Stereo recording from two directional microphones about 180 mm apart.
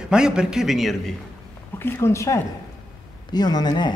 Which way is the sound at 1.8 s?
15° left (ahead or behind).